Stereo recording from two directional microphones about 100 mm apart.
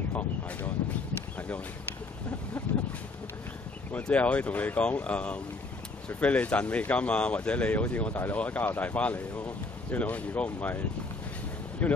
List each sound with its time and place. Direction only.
0.1 s a sound: 15° left (ahead or behind)
3.9 s speech: 15° left (ahead or behind)
11.8 s speech: 15° left (ahead or behind)